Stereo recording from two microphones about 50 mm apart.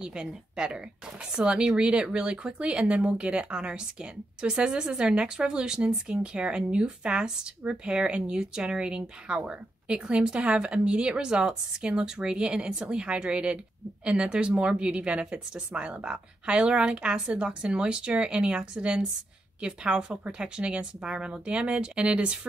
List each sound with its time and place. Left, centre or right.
0.0 s a woman's voice: centre